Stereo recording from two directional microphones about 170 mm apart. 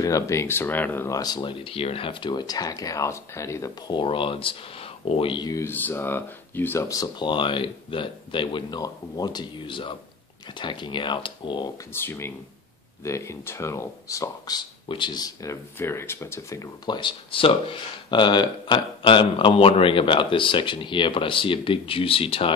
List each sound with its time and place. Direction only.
0.0 s speech: 15° left (ahead or behind)
11.9 s speech: 15° left (ahead or behind); by 22.5 s 30° left (ahead or behind)